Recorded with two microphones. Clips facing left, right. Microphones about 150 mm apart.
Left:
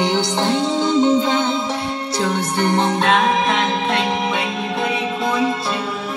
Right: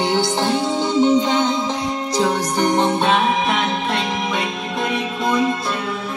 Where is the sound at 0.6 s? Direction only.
15° right (ahead or behind).